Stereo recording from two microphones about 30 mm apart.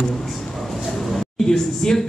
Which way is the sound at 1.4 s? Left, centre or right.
Centre.